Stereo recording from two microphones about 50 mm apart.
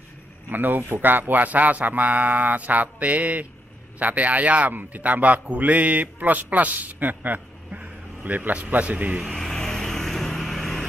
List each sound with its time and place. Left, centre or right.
0.5 s speech: right
9.2 s vehicle: centre